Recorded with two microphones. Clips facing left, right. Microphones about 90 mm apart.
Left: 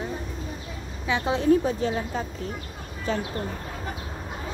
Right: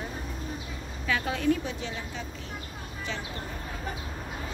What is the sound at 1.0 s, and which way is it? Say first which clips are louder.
A woman's voice: left 5 dB; 25° left (ahead or behind).